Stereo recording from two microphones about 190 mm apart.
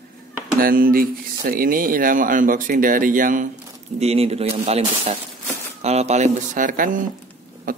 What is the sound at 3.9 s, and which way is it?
Speech, 35° right (ahead or behind).